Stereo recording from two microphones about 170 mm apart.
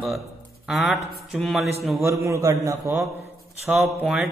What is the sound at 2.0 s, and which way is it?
Mantra, 15° right (ahead or behind).